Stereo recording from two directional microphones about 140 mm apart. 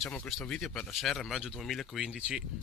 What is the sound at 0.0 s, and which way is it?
Speech, 5° left (ahead or behind).